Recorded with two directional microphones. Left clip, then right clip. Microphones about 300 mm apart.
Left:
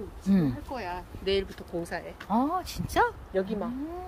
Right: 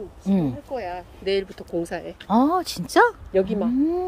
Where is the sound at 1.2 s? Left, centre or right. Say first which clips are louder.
Right 4 dB; centre.